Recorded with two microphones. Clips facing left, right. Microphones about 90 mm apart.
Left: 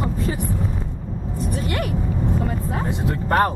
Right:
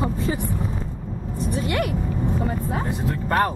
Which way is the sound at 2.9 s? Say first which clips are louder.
Left 2 dB; 20° left (ahead or behind).